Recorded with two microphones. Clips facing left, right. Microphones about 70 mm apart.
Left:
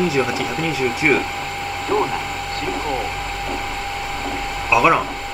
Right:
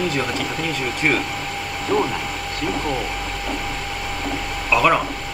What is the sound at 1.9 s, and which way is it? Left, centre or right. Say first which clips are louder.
Speech: left 1 dB; left.